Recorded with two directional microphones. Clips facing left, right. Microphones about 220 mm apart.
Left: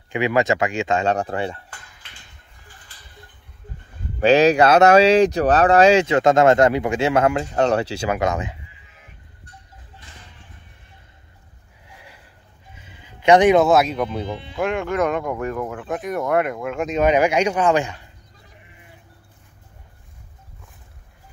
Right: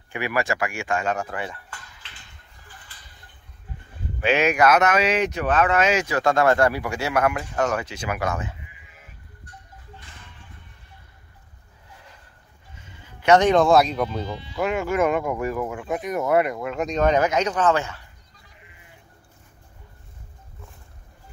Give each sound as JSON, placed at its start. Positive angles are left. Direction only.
{"t": 0.1, "sound": "speech", "side_deg": 20}
{"t": 4.2, "sound": "speech", "side_deg": 35}
{"t": 12.7, "sound": "speech", "side_deg": 15}
{"t": 14.2, "sound": "speech", "side_deg": 55}
{"t": 14.6, "sound": "speech", "side_deg": -5}